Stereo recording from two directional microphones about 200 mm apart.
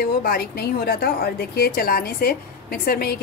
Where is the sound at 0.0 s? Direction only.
50° left (ahead or behind).